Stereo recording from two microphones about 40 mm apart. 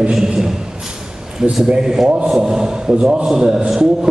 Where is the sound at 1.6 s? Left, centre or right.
Centre.